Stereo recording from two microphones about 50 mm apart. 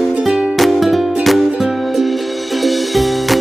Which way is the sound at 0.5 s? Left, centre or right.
Centre.